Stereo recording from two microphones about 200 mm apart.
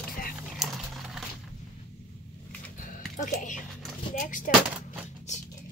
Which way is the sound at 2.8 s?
40° left (ahead or behind).